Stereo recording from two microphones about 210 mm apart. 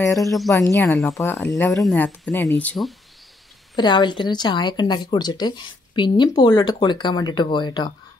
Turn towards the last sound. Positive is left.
turn(degrees=20)  # may be behind; listen again after turning